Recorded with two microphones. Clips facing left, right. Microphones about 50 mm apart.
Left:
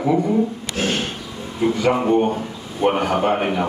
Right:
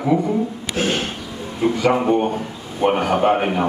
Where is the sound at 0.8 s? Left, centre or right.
Right.